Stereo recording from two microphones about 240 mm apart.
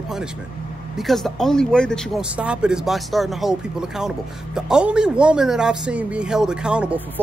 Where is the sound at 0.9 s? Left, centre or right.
Centre.